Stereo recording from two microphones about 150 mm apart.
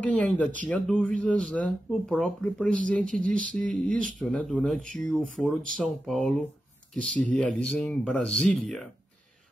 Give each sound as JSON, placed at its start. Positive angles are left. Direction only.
{"t": 0.0, "sound": "speech", "side_deg": 10}
{"t": 3.1, "sound": "a sound", "side_deg": -60}
{"t": 3.5, "sound": "speech", "side_deg": 5}